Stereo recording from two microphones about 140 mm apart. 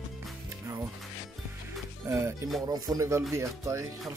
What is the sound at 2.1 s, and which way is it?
Speech, 20° right (ahead or behind).